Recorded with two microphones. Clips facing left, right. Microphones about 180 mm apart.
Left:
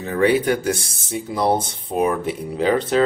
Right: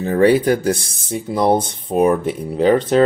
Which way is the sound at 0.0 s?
35° right (ahead or behind).